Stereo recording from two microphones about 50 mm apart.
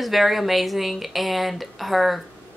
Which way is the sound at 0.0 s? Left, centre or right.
Centre.